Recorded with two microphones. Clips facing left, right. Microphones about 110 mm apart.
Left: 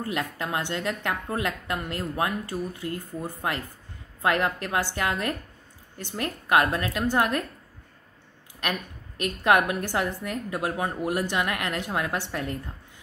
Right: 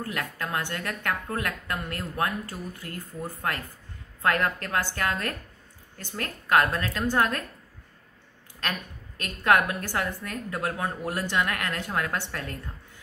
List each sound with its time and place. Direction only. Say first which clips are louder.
0.0 s a woman's voice: left 3 dB; 20° left (ahead or behind)
8.5 s a woman's voice: left 2 dB; 15° left (ahead or behind)